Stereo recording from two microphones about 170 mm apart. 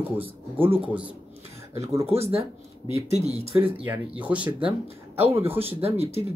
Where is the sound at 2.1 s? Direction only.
35° right (ahead or behind).